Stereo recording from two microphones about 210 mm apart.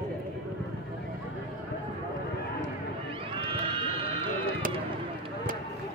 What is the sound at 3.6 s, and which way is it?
Sheep, 25° right (ahead or behind).